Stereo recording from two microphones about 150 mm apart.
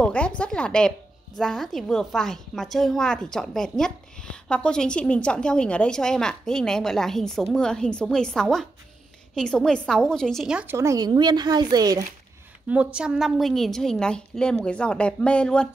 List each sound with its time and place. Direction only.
0.0 s a woman's voice: 10° left (ahead or behind)
10.7 s speech: 20° right (ahead or behind)
12.6 s a woman's voice: 5° right (ahead or behind)